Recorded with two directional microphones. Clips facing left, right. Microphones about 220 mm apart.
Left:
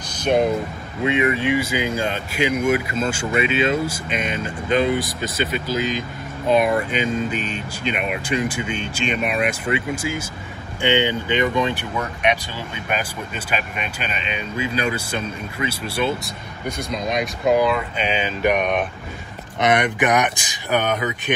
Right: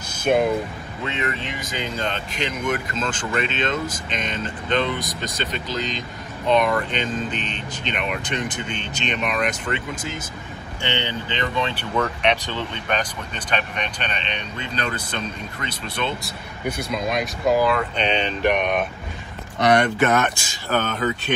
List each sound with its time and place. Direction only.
0.1 s a sound: 5° right (ahead or behind)
1.0 s speech: 10° left (ahead or behind)
16.6 s speech: 5° right (ahead or behind)
19.6 s speech: 20° left (ahead or behind)